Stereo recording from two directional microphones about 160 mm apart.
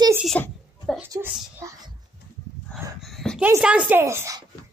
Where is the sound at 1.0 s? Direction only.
15° right (ahead or behind).